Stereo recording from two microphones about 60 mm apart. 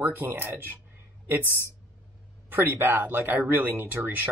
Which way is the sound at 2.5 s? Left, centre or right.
Right.